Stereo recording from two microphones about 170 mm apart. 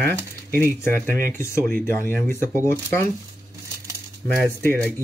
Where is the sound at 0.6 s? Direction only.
10° left (ahead or behind).